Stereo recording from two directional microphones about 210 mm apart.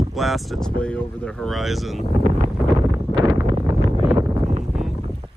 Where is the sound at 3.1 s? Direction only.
25° right (ahead or behind).